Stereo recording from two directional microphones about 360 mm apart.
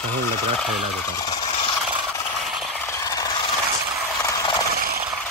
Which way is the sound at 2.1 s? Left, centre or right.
Centre.